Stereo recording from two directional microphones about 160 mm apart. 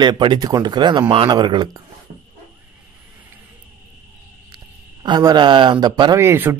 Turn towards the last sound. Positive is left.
turn(degrees=-15)  # may be behind; listen again after turning